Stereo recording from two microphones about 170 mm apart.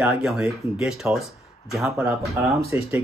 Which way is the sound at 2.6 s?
15° right (ahead or behind).